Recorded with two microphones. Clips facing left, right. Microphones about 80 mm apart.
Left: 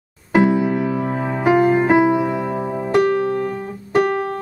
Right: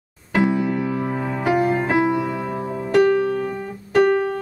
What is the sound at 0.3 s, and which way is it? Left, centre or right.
Music, centre.